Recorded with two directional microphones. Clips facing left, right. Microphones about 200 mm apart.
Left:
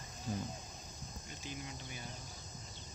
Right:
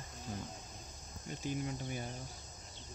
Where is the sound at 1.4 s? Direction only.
50° right (ahead or behind).